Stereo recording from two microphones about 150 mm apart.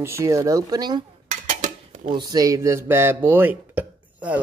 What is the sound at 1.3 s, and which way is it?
Dishes, 55° right (ahead or behind).